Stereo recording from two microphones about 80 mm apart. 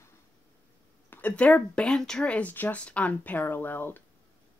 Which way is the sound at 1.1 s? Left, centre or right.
Centre.